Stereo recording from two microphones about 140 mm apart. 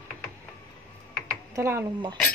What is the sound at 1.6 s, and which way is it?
Speech, 20° right (ahead or behind).